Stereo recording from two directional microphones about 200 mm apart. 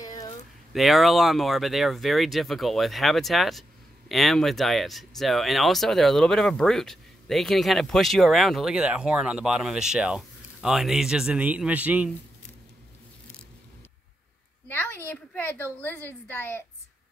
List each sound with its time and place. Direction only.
0.0 s a sound: 15° left (ahead or behind)
0.7 s speech: centre (ahead or behind)
14.7 s a woman's voice: 10° left (ahead or behind)